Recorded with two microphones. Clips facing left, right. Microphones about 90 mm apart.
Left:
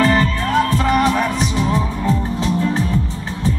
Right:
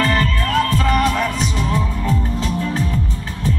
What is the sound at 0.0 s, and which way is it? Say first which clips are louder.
Music: left 3 dB; 20° left (ahead or behind).